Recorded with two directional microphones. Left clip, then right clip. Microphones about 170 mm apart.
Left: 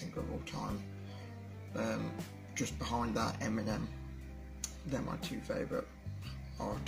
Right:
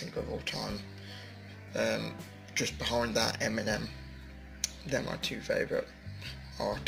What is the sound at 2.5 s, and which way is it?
Speech, 20° left (ahead or behind).